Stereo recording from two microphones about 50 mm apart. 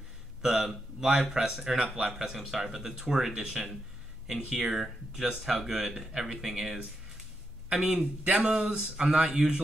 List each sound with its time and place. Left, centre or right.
0.4 s speech: centre
4.7 s speech: centre
7.7 s a man's voice: right